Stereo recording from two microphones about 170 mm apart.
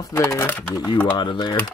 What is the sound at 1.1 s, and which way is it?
Speech, 25° left (ahead or behind).